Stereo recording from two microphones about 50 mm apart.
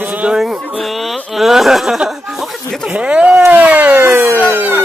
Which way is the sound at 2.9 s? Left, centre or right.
Right.